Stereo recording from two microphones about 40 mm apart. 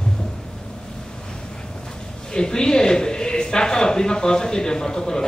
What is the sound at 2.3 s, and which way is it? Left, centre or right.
Speech, centre.